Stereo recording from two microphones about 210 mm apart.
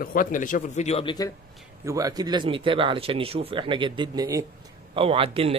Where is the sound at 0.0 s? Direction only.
40° left (ahead or behind); by 1.3 s 20° left (ahead or behind).